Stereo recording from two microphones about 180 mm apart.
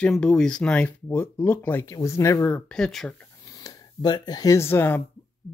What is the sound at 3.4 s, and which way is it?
Speech, 20° left (ahead or behind).